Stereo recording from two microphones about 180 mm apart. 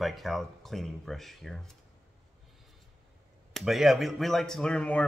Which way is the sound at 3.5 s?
Centre (ahead or behind).